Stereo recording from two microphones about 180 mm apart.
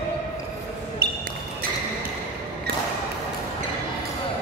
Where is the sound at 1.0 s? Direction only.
65° right (ahead or behind).